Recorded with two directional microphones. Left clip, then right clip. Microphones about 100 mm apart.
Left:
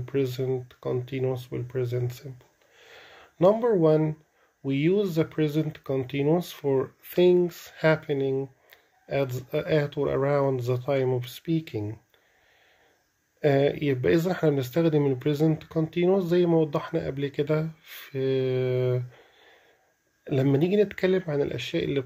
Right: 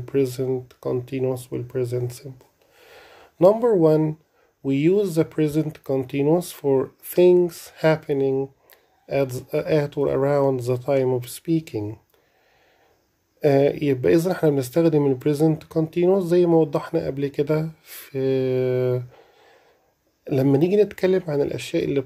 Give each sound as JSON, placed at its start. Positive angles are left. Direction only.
{"t": 0.0, "sound": "speech", "side_deg": -45}
{"t": 2.8, "sound": "a sound", "side_deg": -50}
{"t": 4.6, "sound": "speech", "side_deg": -50}
{"t": 13.4, "sound": "speech", "side_deg": -50}